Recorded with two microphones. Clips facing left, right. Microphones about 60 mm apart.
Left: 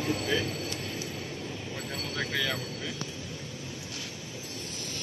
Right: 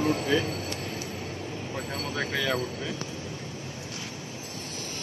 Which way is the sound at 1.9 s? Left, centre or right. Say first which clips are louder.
Right 2 dB; centre.